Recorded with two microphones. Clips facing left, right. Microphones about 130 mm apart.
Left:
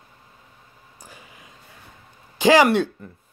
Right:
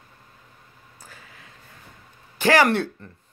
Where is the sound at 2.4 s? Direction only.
15° left (ahead or behind).